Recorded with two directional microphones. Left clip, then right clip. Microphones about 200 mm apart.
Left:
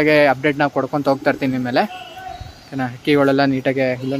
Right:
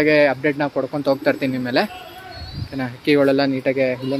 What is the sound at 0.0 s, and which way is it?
Speech, 10° left (ahead or behind).